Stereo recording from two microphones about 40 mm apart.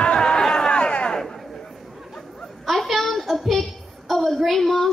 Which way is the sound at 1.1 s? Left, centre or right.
Centre.